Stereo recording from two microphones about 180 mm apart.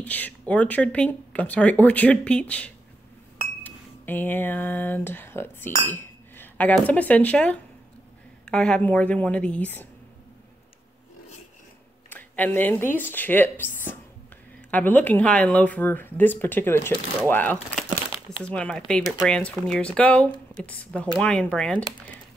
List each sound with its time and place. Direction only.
0.0 s speech: 10° left (ahead or behind)
12.1 s speech: 10° left (ahead or behind)
17.8 s crumpling: 30° left (ahead or behind)
18.4 s speech: 5° left (ahead or behind)